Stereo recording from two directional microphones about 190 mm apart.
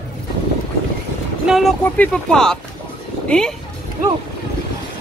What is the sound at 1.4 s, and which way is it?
Speech, centre (ahead or behind).